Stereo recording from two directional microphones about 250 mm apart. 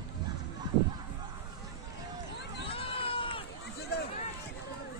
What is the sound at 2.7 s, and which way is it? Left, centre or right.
Run, left.